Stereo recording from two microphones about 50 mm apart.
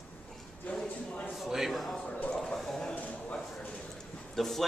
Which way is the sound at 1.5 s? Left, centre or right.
Centre.